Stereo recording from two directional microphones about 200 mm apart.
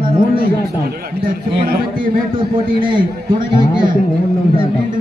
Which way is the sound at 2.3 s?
25° right (ahead or behind).